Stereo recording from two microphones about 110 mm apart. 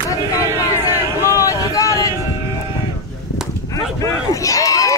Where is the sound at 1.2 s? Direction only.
30° left (ahead or behind).